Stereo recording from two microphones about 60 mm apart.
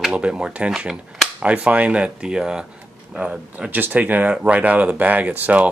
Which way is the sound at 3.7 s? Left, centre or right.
Right.